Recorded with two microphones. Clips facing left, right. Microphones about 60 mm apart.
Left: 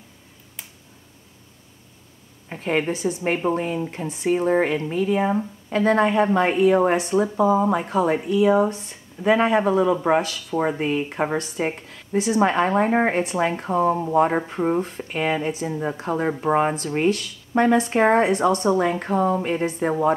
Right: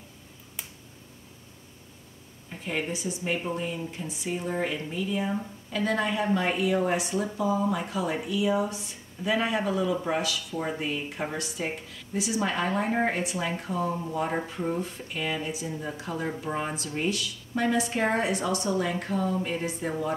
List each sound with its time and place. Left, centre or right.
2.5 s speech: left